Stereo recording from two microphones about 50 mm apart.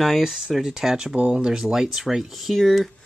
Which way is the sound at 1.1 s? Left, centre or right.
Right.